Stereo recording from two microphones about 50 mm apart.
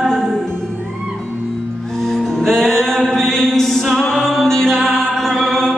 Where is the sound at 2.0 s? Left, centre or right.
Centre.